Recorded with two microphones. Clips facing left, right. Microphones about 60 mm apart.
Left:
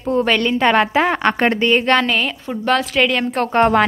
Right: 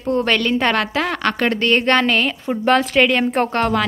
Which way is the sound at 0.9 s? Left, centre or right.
Left.